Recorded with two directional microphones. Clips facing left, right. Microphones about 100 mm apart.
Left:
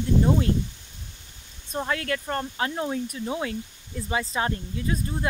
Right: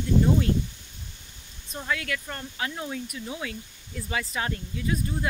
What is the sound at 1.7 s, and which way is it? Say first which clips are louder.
Speech: left 3 dB; 35° left (ahead or behind).